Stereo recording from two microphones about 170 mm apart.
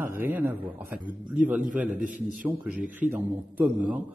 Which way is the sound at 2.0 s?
50° right (ahead or behind).